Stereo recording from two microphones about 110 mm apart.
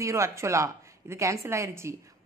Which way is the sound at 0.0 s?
25° right (ahead or behind).